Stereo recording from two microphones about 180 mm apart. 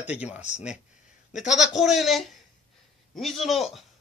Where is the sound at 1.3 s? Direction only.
40° left (ahead or behind).